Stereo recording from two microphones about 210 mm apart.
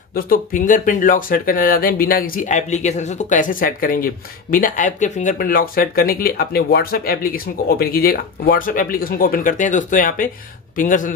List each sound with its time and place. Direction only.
0.1 s speech: 40° left (ahead or behind)